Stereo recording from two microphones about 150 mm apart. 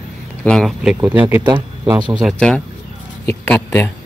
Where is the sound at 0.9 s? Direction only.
15° right (ahead or behind).